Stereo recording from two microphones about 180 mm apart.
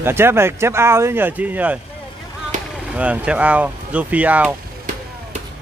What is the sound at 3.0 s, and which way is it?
Speech, 5° right (ahead or behind).